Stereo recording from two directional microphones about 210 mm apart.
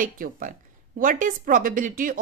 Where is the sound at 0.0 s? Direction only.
40° right (ahead or behind).